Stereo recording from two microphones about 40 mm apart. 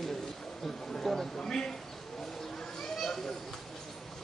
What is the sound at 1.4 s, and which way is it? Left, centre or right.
Speech, centre.